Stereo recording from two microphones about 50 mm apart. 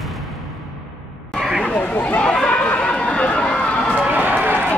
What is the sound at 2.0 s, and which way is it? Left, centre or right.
Chatter, left.